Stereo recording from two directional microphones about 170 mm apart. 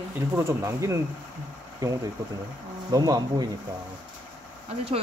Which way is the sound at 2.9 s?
20° right (ahead or behind).